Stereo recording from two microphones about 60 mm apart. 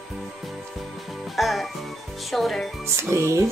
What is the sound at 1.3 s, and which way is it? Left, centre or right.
Music, centre.